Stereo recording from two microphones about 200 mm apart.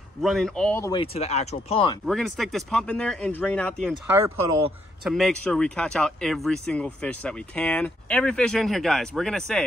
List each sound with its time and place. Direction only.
0.2 s speech: centre (ahead or behind)
0.9 s speech: 30° left (ahead or behind)
2.0 s speech: centre (ahead or behind)
5.0 s speech: centre (ahead or behind)